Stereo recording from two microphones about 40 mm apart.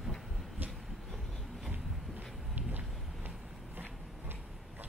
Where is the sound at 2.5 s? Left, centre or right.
Right.